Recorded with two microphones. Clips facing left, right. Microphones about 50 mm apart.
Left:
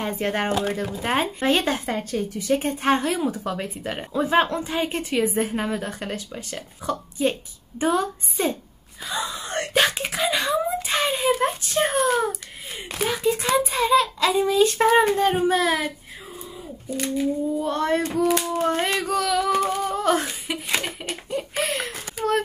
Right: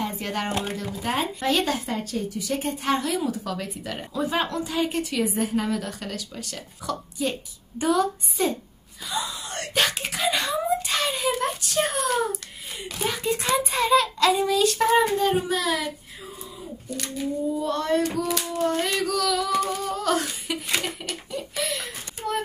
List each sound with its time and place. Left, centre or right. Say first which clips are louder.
0.0 s speech: left 4 dB; left
9.1 s wail: left 3 dB; left
9.8 s a sound: left 3 dB; centre
10.5 s a sound: left 1 dB; left
13.2 s a child's voice: left 3 dB; centre
14.3 s speech: left 2 dB; left
17.6 s female singing: even; left; by 21.2 s centre
21.3 s speech: left 4 dB; left
21.8 s a sound: left 5 dB; left